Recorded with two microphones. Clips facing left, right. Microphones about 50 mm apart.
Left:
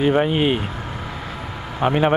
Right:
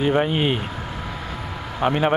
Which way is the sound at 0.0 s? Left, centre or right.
Centre.